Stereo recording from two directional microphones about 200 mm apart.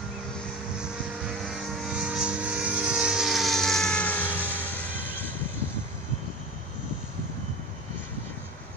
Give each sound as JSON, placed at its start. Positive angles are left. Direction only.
{"t": 1.4, "sound": "vehicle", "side_deg": 0}